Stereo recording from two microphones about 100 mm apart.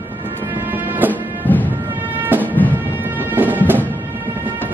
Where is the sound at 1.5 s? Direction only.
20° left (ahead or behind).